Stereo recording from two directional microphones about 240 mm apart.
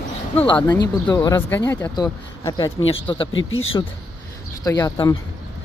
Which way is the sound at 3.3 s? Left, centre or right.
Left.